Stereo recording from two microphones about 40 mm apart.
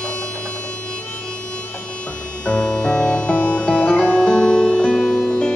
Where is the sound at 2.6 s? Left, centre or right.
Centre.